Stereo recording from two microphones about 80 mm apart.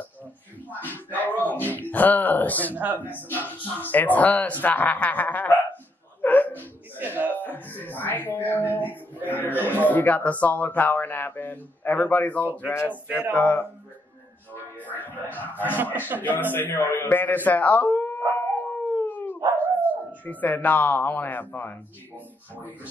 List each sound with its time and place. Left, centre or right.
0.7 s a sound: left
2.7 s speech: right
3.0 s speech: left
6.2 s hiccup: left
7.0 s a sound: right
7.3 s a sound: left
9.3 s speech: left
14.5 s music: left
16.2 s speech: left
18.6 s howl: left
19.8 s dog: right
20.2 s speech: left